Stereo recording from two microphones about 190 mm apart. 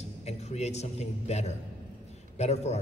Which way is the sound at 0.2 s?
35° left (ahead or behind).